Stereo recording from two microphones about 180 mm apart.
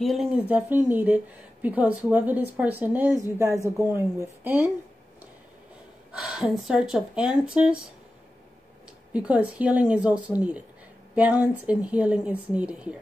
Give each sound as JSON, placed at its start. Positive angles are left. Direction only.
{"t": 0.0, "sound": "speech", "side_deg": 0}
{"t": 6.1, "sound": "speech", "side_deg": 0}
{"t": 9.1, "sound": "speech", "side_deg": -5}